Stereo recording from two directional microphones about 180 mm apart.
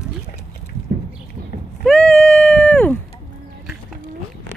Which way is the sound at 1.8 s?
Centre (ahead or behind).